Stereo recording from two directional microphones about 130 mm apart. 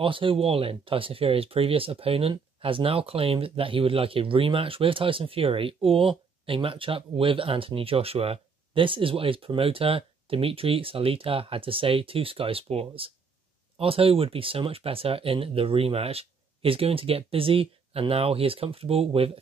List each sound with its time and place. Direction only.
0.0 s speech: 40° right (ahead or behind)